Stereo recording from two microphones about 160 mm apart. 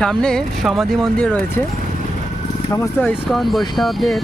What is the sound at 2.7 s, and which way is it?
Speech, 15° left (ahead or behind).